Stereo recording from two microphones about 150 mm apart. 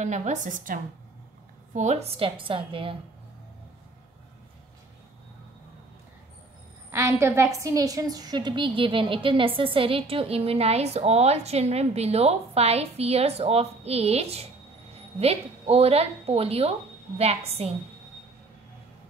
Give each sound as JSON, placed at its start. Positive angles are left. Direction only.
{"t": 0.0, "sound": "a woman's voice", "side_deg": -50}
{"t": 6.9, "sound": "a woman's voice", "side_deg": -20}